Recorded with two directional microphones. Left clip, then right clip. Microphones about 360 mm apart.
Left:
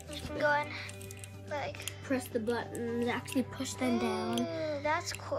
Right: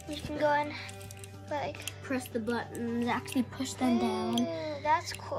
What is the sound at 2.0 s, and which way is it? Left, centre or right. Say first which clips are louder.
Speech: left 1 dB; centre.